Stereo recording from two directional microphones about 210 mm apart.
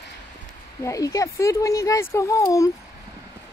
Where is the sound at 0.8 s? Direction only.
15° left (ahead or behind).